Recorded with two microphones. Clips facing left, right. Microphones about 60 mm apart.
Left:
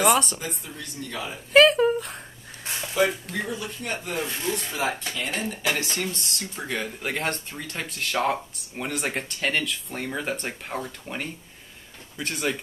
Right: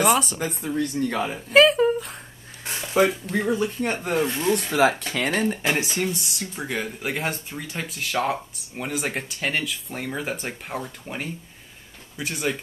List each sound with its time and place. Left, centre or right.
0.0 s speech: centre
0.4 s speech: right
1.5 s speech: centre
2.9 s speech: right
4.7 s speech: right
5.1 s speech: right
5.4 s speech: right
5.7 s speech: right
5.9 s speech: centre